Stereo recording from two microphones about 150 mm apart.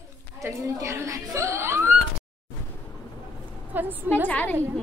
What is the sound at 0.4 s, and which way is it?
Speech, 20° right (ahead or behind).